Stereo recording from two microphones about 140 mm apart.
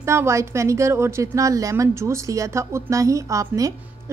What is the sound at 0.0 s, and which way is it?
A woman's voice, 20° right (ahead or behind).